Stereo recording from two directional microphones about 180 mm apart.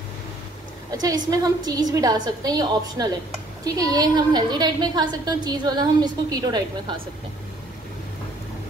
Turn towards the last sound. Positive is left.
turn(degrees=-20)  # may be behind; listen again after turning